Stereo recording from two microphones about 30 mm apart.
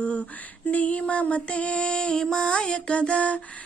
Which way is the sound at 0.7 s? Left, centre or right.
Left.